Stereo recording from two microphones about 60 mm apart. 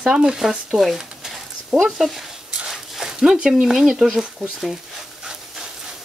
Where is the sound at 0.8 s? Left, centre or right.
Centre.